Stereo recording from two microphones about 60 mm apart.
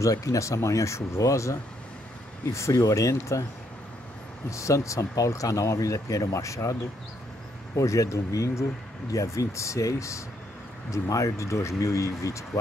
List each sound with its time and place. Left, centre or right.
0.0 s speech: left
2.7 s speech: left
4.5 s speech: left